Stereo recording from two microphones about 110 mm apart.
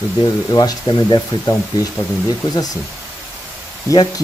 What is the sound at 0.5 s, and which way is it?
Speech, 40° left (ahead or behind).